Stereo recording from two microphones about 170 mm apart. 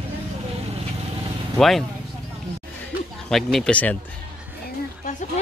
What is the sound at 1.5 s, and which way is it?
Speech, centre (ahead or behind).